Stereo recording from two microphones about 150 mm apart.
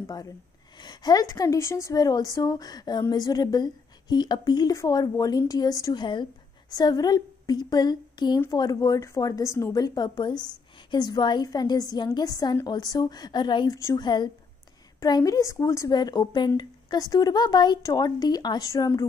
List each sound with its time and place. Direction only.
0.0 s a woman's voice: 25° left (ahead or behind)
13.7 s a woman's voice: 20° left (ahead or behind)
14.0 s a woman's voice: 30° left (ahead or behind)